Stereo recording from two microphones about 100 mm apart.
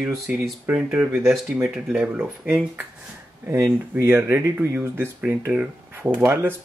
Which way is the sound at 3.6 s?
20° right (ahead or behind).